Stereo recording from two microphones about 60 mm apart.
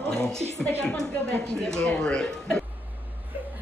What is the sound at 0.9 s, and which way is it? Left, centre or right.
Speech, centre.